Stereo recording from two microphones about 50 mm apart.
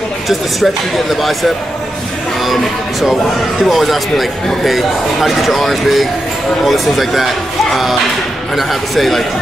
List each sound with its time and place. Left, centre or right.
0.3 s speech: centre